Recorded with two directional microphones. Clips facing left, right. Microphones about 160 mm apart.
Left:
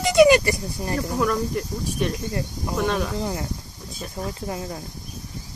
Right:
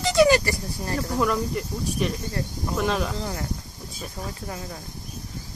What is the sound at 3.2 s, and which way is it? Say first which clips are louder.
Speech: left 3 dB; 15° left (ahead or behind).